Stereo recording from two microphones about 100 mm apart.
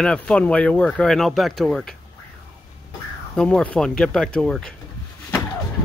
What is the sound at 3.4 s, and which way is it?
Speech, 10° left (ahead or behind).